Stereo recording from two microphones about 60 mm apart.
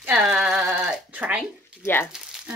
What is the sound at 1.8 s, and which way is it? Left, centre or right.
Speech, left.